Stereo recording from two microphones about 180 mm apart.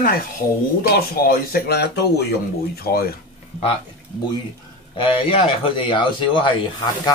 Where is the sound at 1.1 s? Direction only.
55° left (ahead or behind).